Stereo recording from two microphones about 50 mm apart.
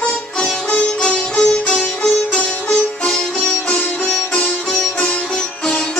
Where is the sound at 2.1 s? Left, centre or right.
Left.